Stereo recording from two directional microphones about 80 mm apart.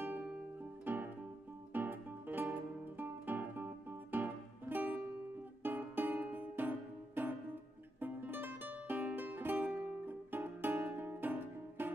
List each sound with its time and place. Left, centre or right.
0.0 s music: right